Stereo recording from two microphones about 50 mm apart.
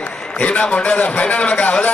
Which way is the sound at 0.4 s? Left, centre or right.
Left.